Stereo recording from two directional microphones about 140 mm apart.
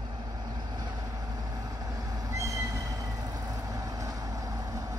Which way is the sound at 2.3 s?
20° right (ahead or behind).